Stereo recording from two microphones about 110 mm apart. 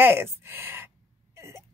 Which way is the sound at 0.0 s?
20° right (ahead or behind).